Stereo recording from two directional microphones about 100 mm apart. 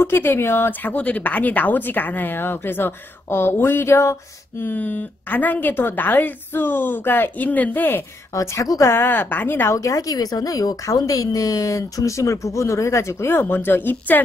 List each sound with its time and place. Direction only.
0.0 s a woman's voice: 25° left (ahead or behind)
8.4 s a woman's voice: 35° left (ahead or behind); by 14.2 s 20° left (ahead or behind)